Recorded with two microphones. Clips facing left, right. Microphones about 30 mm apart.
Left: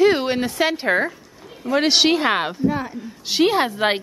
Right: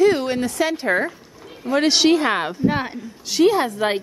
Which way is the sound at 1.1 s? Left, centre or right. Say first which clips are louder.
Even; centre.